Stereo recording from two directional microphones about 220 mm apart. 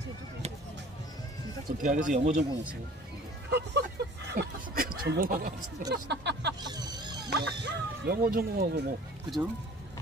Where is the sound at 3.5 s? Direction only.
50° right (ahead or behind).